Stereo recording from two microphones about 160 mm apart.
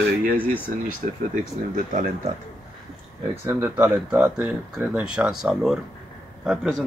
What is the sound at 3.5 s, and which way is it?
Speech, 15° right (ahead or behind).